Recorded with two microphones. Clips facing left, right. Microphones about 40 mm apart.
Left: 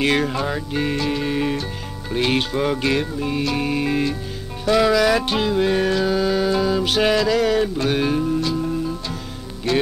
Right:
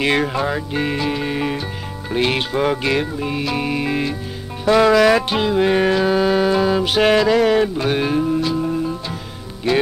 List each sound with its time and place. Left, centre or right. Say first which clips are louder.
0.0 s music: right 2 dB; centre
4.9 s music: right 4 dB; right
6.8 s music: right 3 dB; centre